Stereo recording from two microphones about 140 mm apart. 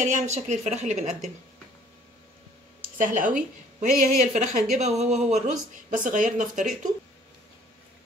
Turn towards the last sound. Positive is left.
turn(degrees=-65)  # may be behind; listen again after turning